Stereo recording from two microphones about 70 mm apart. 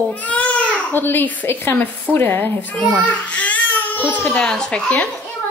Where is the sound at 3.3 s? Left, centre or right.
Left.